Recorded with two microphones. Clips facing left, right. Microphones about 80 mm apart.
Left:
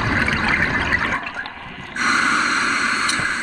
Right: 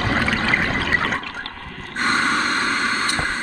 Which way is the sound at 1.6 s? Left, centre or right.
Left.